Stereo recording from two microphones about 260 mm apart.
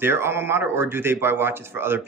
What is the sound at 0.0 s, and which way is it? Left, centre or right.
Speech, centre.